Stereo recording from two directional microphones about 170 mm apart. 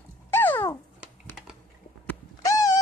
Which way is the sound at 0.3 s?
10° left (ahead or behind).